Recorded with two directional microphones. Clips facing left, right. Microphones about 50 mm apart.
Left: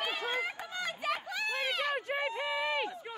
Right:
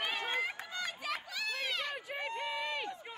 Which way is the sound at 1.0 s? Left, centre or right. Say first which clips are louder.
Left 4 dB; left.